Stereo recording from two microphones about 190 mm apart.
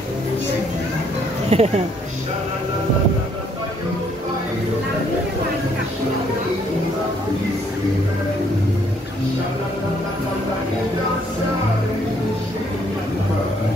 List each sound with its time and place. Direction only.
1.5 s speech: 35° right (ahead or behind)